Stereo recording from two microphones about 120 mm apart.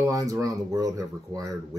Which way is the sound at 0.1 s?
30° right (ahead or behind).